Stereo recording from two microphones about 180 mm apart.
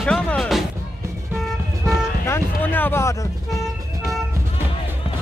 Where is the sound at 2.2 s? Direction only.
10° left (ahead or behind).